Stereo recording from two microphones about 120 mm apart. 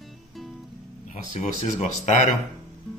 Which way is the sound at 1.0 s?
90° left.